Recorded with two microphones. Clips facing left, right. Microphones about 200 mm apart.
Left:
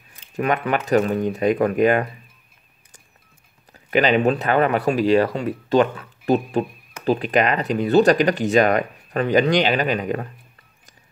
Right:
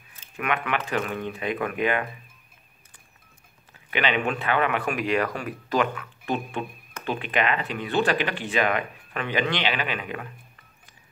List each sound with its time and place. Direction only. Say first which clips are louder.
0.4 s speech: left 6 dB; 40° left (ahead or behind)
3.7 s speech: left 8 dB; 40° left (ahead or behind)